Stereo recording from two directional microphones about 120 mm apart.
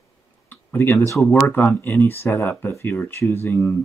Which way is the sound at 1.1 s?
25° left (ahead or behind).